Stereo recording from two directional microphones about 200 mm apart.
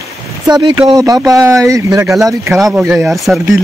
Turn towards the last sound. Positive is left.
turn(degrees=0)  # may be behind; listen again after turning